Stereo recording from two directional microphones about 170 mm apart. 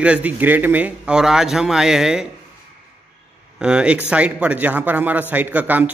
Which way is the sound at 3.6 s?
5° right (ahead or behind).